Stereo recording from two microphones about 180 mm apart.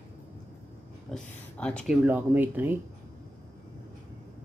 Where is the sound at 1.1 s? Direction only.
5° left (ahead or behind).